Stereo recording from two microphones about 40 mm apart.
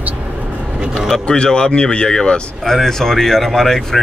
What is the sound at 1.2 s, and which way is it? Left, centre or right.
Speech, left.